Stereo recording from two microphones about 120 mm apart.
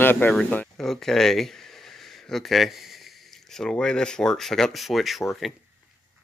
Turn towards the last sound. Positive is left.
turn(degrees=0)  # may be behind; listen again after turning